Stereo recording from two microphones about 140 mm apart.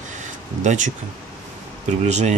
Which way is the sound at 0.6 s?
60° right (ahead or behind).